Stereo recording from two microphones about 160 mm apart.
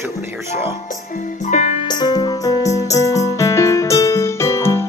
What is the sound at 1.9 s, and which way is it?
Music, 25° left (ahead or behind).